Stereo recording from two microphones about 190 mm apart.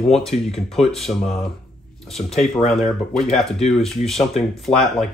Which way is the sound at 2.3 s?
Centre (ahead or behind).